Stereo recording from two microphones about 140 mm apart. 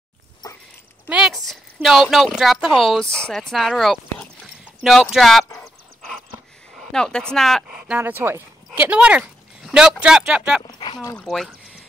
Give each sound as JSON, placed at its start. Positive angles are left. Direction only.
{"t": 1.0, "sound": "a woman's voice", "side_deg": -5}
{"t": 6.8, "sound": "speech", "side_deg": 5}
{"t": 7.7, "sound": "speech", "side_deg": -10}
{"t": 10.6, "sound": "a sound", "side_deg": 35}
{"t": 11.1, "sound": "speech", "side_deg": 5}